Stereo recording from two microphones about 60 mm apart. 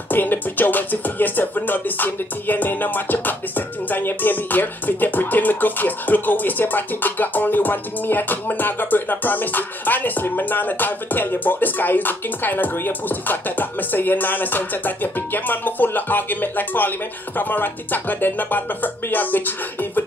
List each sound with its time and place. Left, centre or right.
0.1 s music: left